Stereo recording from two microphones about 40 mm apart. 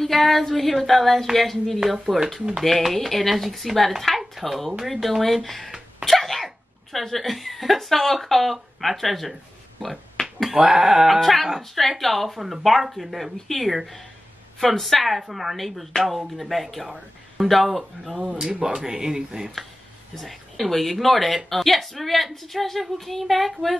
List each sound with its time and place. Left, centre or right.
0.0 s a woman's voice: centre
9.8 s finger snapping: centre
10.5 s speech: centre
11.1 s a woman's voice: centre
11.4 s speech: centre
12.0 s a woman's voice: centre
18.5 s speech: right
20.5 s a woman's voice: centre